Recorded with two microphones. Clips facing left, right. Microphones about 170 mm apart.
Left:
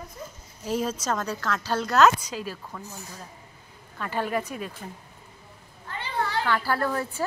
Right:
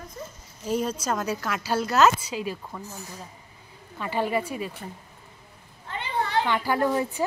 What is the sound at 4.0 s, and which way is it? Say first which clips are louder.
Speech: right 2 dB; 10° right (ahead or behind).